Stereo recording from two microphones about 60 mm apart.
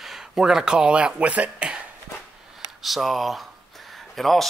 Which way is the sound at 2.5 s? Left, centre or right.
Centre.